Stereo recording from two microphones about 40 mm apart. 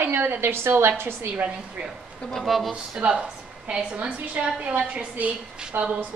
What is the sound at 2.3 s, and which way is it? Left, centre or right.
Speech, centre.